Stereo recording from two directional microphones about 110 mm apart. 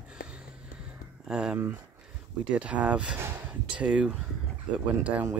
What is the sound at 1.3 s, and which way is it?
Speech, 5° right (ahead or behind).